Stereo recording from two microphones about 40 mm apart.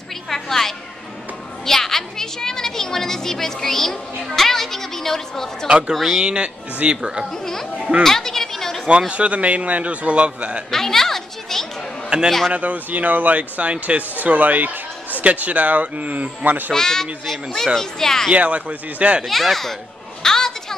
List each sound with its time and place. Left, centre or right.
0.3 s a sound: centre
5.7 s speech: right
7.0 s speech: centre
7.4 s speech: centre
8.0 s a sound: centre
9.1 s speech: right
10.7 s children playing: centre
12.3 s speech: centre
12.5 s speech: right
16.7 s a child's voice: centre
18.3 s speech: right
19.2 s speech: centre
20.2 s a sound: centre